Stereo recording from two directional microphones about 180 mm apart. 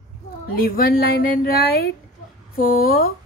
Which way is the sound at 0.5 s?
55° left (ahead or behind).